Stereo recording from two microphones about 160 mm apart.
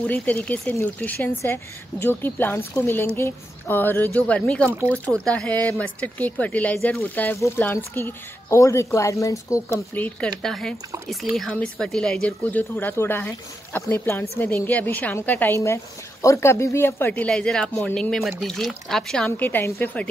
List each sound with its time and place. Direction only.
0.0 s speech: 10° left (ahead or behind)
4.6 s speech: 15° right (ahead or behind)
4.9 s a woman's voice: 10° left (ahead or behind)